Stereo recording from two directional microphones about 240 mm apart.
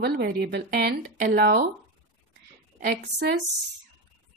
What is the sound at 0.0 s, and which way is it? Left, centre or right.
A woman's voice, right.